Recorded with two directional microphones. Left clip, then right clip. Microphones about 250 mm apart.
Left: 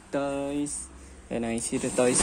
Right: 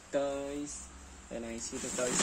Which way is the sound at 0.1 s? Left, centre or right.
Centre.